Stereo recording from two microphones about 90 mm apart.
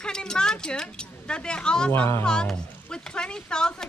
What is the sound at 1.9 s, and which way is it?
Speech, 25° left (ahead or behind).